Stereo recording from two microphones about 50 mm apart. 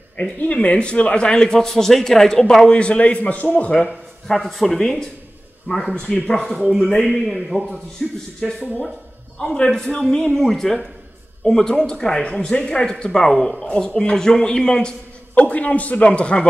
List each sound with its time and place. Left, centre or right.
0.4 s a man's voice: left
4.3 s speech: centre
6.7 s a man's voice: centre
8.4 s speech: centre
15.3 s a man's voice: left